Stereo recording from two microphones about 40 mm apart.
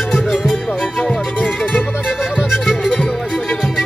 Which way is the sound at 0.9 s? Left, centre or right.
Centre.